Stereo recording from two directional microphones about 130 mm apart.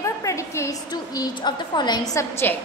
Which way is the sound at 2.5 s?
15° left (ahead or behind).